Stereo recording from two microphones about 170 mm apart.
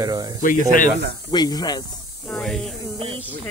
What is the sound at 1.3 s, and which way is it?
Speech, 25° left (ahead or behind).